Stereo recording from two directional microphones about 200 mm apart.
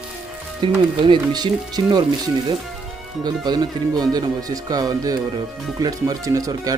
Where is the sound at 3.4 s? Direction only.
20° right (ahead or behind).